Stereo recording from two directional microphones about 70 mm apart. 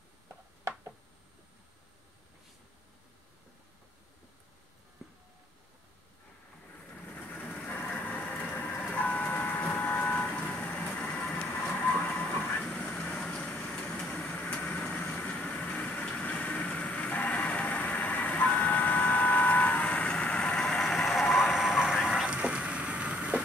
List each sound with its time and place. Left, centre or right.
6.9 s vehicle: centre
11.4 s train: left
12.6 s vehicle: centre